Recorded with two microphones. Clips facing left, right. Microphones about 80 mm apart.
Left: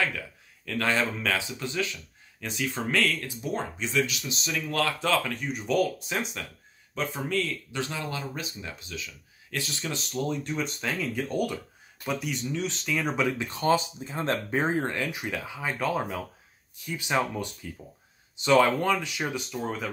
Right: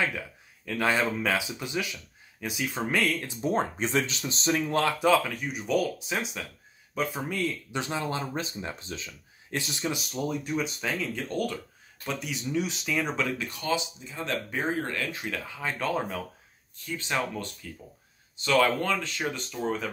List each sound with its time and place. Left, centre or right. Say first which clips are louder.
0.7 s speech: right 1 dB; centre
3.4 s speech: right 5 dB; right
5.0 s speech: right 3 dB; centre
7.2 s speech: left 1 dB; centre; by 9.1 s right
9.5 s speech: right 2 dB; right; by 13.1 s centre
13.4 s speech: left 5 dB; left; by 16.3 s centre
16.8 s speech: left 3 dB; centre